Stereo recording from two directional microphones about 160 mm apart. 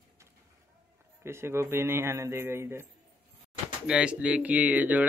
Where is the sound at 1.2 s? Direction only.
15° right (ahead or behind).